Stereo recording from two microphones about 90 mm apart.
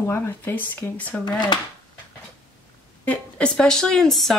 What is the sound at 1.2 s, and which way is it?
Speech, 55° left (ahead or behind).